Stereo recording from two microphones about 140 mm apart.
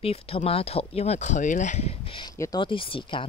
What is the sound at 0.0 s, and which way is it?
Speech, 45° left (ahead or behind).